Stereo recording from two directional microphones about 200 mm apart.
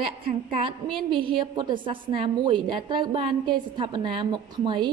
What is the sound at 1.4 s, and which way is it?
A woman's voice, 25° right (ahead or behind).